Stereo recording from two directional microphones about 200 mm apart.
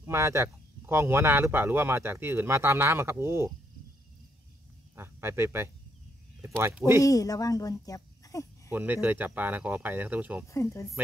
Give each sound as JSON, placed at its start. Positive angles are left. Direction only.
{"t": 0.0, "sound": "speech", "side_deg": -15}
{"t": 4.9, "sound": "speech", "side_deg": -10}
{"t": 7.0, "sound": "speech", "side_deg": 15}
{"t": 8.7, "sound": "speech", "side_deg": -10}
{"t": 10.5, "sound": "speech", "side_deg": 15}